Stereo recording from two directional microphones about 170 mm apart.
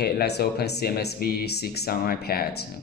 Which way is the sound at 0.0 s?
70° left (ahead or behind).